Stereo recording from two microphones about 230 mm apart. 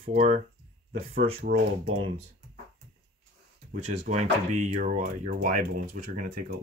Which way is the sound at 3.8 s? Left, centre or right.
Right.